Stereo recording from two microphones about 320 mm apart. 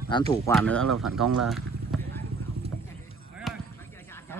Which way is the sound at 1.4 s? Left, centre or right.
Centre.